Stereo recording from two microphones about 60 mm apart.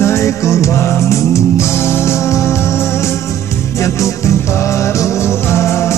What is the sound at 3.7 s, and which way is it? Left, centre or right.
Music, left.